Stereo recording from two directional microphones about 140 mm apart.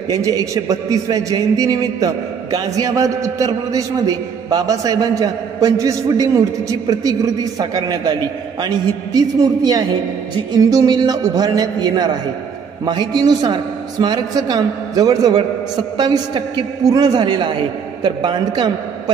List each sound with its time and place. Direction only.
0.1 s a man's voice: 25° right (ahead or behind)